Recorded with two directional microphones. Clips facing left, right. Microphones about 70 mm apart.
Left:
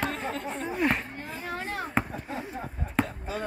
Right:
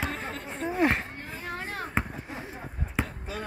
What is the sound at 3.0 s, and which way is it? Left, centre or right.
Basketball bounce, centre.